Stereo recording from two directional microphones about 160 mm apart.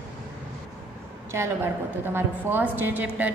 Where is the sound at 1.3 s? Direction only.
15° right (ahead or behind).